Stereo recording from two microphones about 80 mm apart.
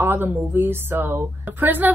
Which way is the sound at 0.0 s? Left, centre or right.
Right.